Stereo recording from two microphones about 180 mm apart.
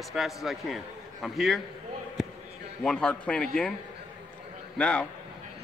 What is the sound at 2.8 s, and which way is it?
Speech, 5° left (ahead or behind).